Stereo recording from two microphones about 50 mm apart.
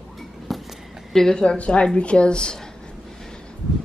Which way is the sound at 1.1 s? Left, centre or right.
Centre.